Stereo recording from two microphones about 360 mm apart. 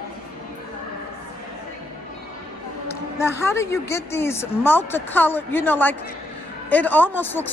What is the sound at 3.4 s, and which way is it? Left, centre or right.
A woman's voice, centre.